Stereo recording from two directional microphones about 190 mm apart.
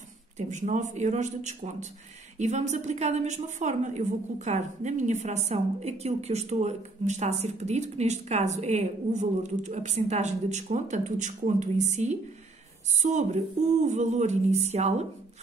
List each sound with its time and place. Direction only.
0.4 s a woman's voice: 40° right (ahead or behind)